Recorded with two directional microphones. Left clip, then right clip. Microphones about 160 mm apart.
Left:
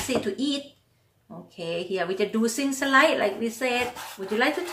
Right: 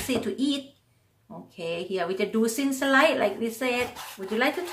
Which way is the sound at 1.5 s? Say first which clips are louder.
Left 1 dB; 15° right (ahead or behind).